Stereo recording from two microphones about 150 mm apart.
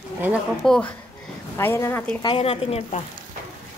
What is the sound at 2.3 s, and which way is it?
Speech, 40° left (ahead or behind).